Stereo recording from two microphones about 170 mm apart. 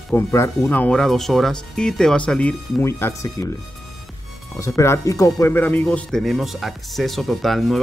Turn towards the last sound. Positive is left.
turn(degrees=0)  # may be behind; listen again after turning